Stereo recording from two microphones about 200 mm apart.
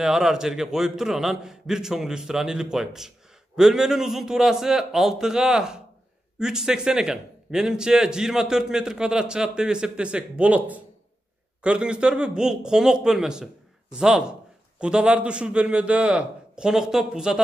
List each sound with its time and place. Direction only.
0.0 s a man's voice: centre (ahead or behind)